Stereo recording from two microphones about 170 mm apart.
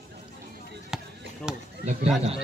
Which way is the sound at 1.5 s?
5° right (ahead or behind).